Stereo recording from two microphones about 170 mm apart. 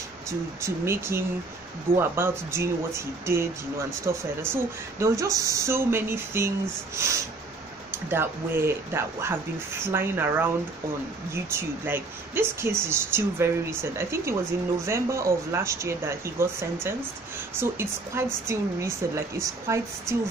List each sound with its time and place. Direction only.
0.3 s speech: 15° right (ahead or behind)